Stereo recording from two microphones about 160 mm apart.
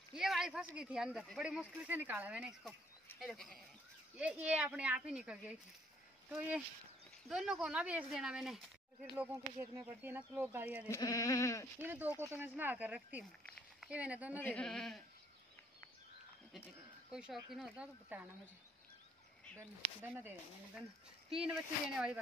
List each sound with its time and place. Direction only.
0.1 s a sound: 5° right (ahead or behind)
0.7 s speech: 5° right (ahead or behind)
3.2 s speech: 5° left (ahead or behind)
10.9 s bleat: 20° left (ahead or behind)
11.8 s speech: 10° right (ahead or behind)
13.2 s speech: centre (ahead or behind)
14.4 s speech: 5° left (ahead or behind)
17.1 s speech: 5° right (ahead or behind)
20.0 s speech: 10° right (ahead or behind)